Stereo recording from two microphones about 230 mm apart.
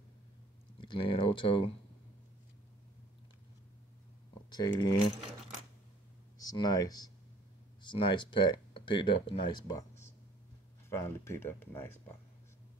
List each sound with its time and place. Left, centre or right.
0.7 s speech: left
4.5 s speech: centre
6.4 s speech: centre